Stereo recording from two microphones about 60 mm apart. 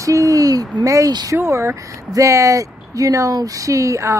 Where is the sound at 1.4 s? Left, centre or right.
Right.